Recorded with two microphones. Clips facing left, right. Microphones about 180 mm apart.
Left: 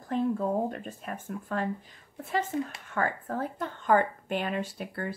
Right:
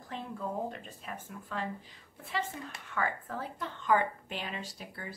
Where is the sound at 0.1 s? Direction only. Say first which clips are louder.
Left 13 dB; 50° left (ahead or behind).